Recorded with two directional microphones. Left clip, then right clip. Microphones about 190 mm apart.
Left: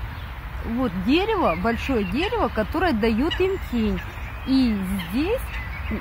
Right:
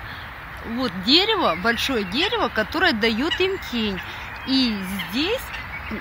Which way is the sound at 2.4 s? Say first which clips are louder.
Right 1 dB; 10° right (ahead or behind).